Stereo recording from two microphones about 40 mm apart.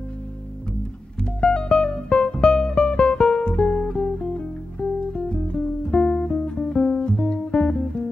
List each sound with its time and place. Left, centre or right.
1.4 s music: left